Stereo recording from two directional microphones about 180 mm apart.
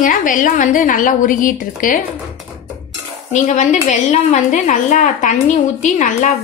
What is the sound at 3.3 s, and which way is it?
A woman's voice, 40° left (ahead or behind).